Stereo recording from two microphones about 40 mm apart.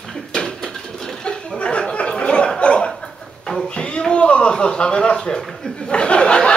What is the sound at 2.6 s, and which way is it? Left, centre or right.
Chuckle, left.